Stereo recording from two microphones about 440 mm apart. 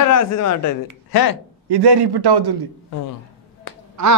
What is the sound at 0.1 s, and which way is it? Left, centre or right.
Speech, left.